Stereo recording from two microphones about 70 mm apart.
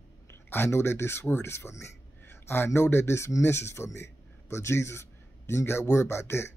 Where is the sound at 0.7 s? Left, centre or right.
Left.